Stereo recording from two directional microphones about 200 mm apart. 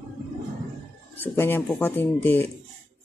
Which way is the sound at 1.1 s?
10° left (ahead or behind).